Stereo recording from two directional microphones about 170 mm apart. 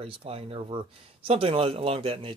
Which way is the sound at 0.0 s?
35° right (ahead or behind).